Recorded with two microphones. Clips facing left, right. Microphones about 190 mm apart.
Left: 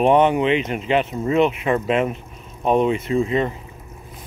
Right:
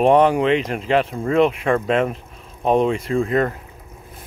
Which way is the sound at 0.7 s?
45° right (ahead or behind).